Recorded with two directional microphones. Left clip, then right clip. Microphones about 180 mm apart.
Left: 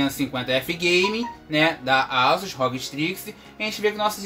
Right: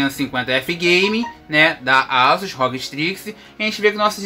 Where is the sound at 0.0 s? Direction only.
30° right (ahead or behind).